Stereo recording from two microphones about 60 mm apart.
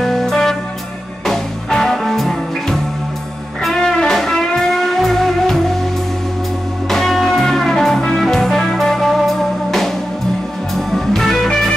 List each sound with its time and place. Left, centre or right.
0.0 s music: centre
6.9 s music: centre